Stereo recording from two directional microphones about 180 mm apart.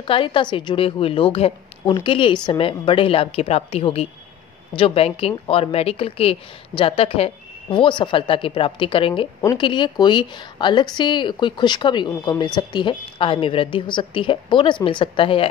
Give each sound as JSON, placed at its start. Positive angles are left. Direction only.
{"t": 0.0, "sound": "a woman's voice", "side_deg": 30}